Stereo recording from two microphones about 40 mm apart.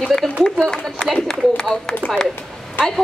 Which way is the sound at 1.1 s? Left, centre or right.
Centre.